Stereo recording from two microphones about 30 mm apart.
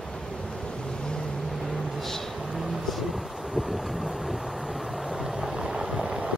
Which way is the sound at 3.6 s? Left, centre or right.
Right.